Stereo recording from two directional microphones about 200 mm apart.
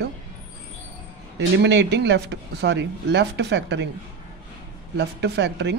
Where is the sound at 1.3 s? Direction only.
60° right (ahead or behind).